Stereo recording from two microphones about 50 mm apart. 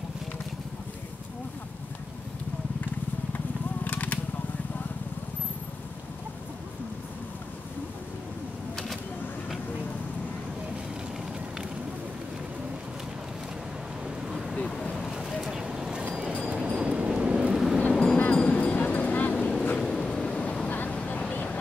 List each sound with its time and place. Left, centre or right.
3.3 s a sound: left
14.3 s vehicle: centre
15.0 s a sound: centre
15.5 s vehicle: centre
16.3 s clip-clop: right
16.8 s vehicle: right
17.9 s train: centre
18.2 s train: left
19.3 s boat: left
19.8 s vehicle: centre
20.6 s vehicle: left
20.9 s vehicle: left